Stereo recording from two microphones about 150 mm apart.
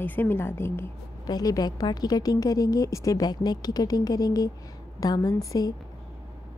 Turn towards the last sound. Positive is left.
turn(degrees=25)  # may be behind; listen again after turning